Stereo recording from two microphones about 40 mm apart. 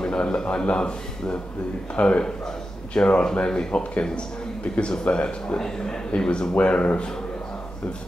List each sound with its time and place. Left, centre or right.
0.0 s a man's voice: left